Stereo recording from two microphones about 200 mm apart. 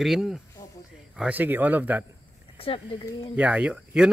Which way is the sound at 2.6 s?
25° left (ahead or behind).